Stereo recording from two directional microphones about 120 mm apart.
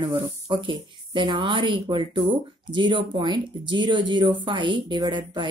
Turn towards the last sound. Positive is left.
turn(degrees=-40)  # may be behind; listen again after turning